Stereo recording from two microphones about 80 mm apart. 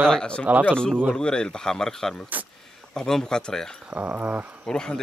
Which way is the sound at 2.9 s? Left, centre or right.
Centre.